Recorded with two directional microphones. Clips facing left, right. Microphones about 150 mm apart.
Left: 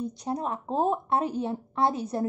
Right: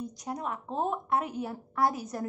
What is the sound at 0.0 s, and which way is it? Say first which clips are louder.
Speech: left 5 dB; 30° left (ahead or behind).